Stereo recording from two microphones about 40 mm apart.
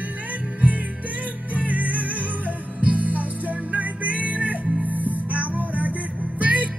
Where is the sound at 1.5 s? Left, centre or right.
Right.